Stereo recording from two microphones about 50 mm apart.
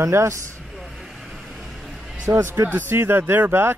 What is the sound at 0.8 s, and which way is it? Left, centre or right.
Vehicle, centre.